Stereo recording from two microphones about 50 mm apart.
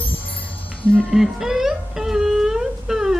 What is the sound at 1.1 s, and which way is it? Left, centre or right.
Music, centre.